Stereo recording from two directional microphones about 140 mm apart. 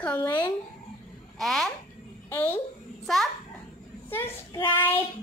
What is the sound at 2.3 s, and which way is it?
Speech, 15° left (ahead or behind).